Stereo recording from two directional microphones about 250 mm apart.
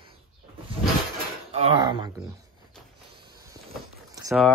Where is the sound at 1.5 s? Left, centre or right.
Right.